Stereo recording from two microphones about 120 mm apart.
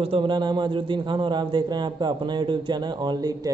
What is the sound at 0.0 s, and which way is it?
A man's voice, 50° right (ahead or behind).